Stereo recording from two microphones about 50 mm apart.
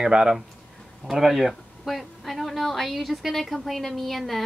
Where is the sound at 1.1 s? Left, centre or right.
Centre.